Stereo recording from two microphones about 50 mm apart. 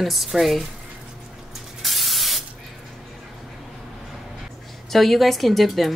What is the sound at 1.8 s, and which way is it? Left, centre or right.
Spray, centre.